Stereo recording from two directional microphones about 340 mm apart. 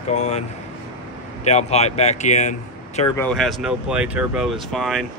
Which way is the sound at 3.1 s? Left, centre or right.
Centre.